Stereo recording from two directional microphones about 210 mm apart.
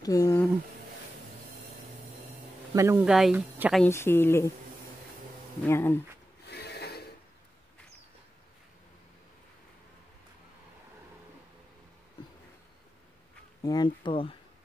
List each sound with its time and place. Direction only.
0.0 s speech: 15° left (ahead or behind)
2.7 s speech: 15° right (ahead or behind)
3.1 s speech: centre (ahead or behind)
3.8 s speech: 10° left (ahead or behind)
5.7 s speech: 10° left (ahead or behind)
6.4 s rub: 50° left (ahead or behind)
13.6 s speech: 20° left (ahead or behind)